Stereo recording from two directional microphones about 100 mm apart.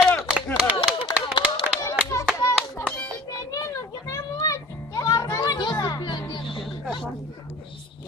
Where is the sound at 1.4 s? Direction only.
45° left (ahead or behind).